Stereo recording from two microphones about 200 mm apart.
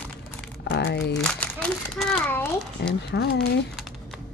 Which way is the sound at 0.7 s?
55° left (ahead or behind).